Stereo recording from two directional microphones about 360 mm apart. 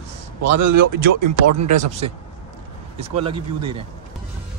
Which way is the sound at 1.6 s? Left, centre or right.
Centre.